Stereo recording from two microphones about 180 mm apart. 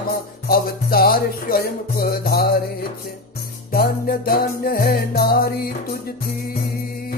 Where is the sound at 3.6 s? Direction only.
55° left (ahead or behind).